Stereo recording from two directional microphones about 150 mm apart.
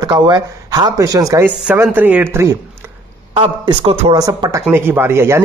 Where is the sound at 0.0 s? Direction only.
30° right (ahead or behind); by 2.4 s 10° right (ahead or behind).